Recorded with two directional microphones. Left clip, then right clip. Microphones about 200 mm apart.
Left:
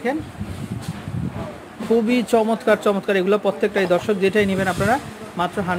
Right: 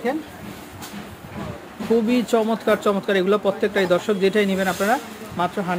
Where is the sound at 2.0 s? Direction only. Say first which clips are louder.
Left 2 dB; 10° left (ahead or behind).